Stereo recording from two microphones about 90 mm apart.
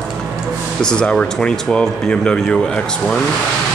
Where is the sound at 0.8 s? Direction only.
10° left (ahead or behind).